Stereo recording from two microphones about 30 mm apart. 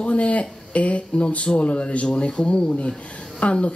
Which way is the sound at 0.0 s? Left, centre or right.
Left.